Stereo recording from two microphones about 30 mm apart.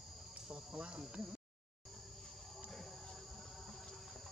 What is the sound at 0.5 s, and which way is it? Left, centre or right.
Cricket, right.